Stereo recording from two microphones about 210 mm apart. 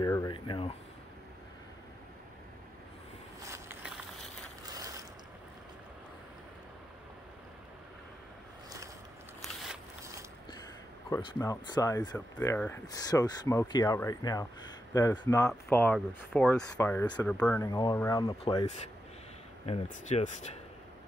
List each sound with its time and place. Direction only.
0.0 s speech: 15° left (ahead or behind)
3.4 s a sound: 10° right (ahead or behind)
4.7 s mechanisms: 15° right (ahead or behind)
9.4 s a sound: centre (ahead or behind)
11.1 s speech: 15° left (ahead or behind)
12.8 s speech: 20° left (ahead or behind)
17.6 s speech: 20° left (ahead or behind)
19.6 s speech: 30° left (ahead or behind)